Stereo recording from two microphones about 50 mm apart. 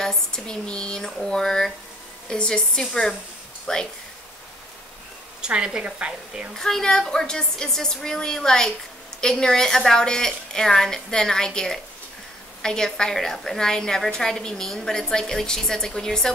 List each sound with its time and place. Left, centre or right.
0.0 s a woman's voice: centre
5.4 s a woman's voice: centre
6.5 s a woman's voice: centre